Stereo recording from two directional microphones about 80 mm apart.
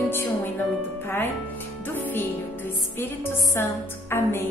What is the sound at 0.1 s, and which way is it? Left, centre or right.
Music, left.